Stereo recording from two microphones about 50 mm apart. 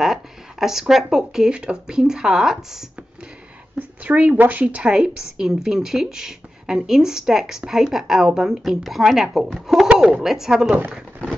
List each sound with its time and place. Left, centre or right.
0.0 s speech: centre
1.5 s a woman's voice: centre
3.7 s speech: right
4.8 s a woman's voice: centre